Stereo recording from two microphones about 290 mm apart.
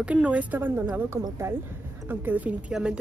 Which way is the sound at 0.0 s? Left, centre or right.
Centre.